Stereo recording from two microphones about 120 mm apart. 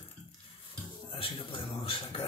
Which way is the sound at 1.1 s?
45° left (ahead or behind).